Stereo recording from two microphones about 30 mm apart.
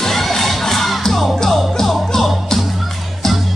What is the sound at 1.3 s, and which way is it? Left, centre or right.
Music, centre.